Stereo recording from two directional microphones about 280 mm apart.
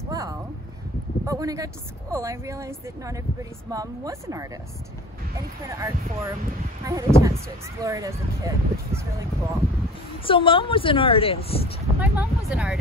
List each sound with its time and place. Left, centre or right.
0.1 s a sound: centre
1.2 s speech: centre
5.7 s speech: centre
10.2 s a woman's voice: centre
12.0 s speech: centre